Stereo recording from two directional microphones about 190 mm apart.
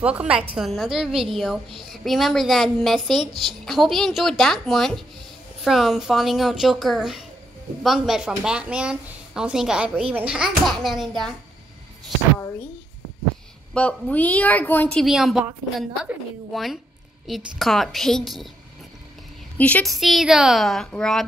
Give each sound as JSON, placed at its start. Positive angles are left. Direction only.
{"t": 0.0, "sound": "speech", "side_deg": -5}
{"t": 13.7, "sound": "a woman's voice", "side_deg": 5}
{"t": 16.5, "sound": "speech", "side_deg": 0}
{"t": 19.5, "sound": "speech", "side_deg": 5}